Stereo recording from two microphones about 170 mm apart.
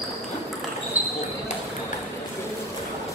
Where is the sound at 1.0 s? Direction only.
10° right (ahead or behind).